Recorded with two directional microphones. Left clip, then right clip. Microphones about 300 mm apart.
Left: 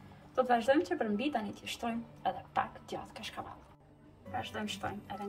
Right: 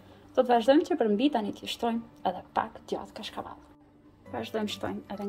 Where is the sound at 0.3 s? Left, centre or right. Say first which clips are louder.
Right 6 dB; right.